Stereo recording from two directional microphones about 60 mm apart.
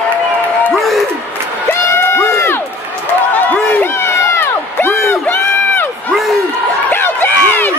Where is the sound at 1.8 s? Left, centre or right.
Left.